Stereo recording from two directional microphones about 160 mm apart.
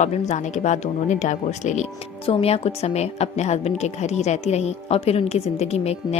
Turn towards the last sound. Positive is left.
turn(degrees=40)  # may be behind; listen again after turning